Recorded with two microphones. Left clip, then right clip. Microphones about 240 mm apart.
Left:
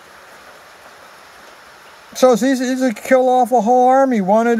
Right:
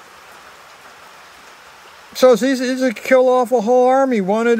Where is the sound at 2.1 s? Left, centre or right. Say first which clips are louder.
Right 1 dB; centre.